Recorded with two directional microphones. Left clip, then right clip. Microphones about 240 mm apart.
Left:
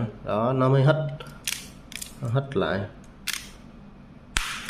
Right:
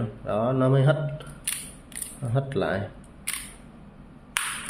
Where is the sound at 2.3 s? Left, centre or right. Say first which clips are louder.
Left 1 dB; centre.